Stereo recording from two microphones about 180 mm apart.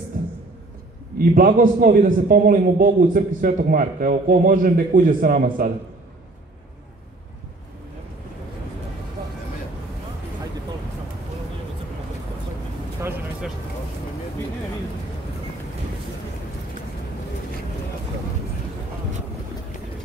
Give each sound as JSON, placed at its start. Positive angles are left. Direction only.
{"t": 1.1, "sound": "a man's voice", "side_deg": -50}